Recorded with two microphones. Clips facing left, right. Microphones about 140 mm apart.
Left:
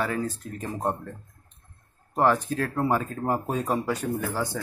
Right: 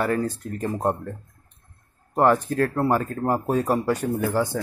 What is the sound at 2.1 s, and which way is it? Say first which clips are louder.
Speech: right 4 dB; 10° right (ahead or behind).